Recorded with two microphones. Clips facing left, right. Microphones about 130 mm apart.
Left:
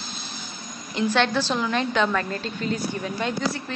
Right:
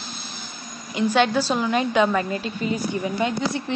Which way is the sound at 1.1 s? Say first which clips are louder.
Right 3 dB; 10° right (ahead or behind).